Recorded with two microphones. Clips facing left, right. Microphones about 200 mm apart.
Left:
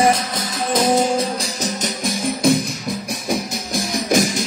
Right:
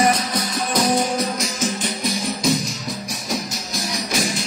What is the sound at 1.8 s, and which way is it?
Music, 50° left (ahead or behind).